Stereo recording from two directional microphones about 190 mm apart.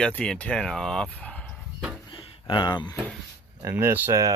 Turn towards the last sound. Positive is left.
turn(degrees=-15)  # may be behind; listen again after turning